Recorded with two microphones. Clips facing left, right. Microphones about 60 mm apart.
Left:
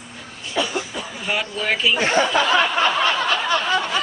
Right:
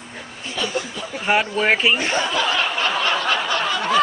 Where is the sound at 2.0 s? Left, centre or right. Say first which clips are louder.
Left 3 dB; left.